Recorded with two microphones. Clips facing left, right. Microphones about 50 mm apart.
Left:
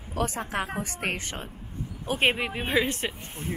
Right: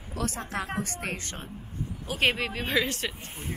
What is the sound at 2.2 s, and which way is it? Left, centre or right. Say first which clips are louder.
Speech: left 1 dB; left.